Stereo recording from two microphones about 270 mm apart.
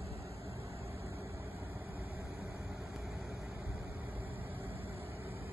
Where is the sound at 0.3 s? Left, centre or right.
Right.